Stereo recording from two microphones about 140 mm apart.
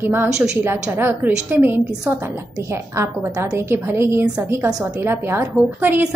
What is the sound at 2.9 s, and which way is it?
A woman's voice, 20° right (ahead or behind).